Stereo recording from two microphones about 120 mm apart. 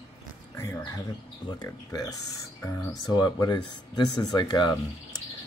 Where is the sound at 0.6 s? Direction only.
20° left (ahead or behind).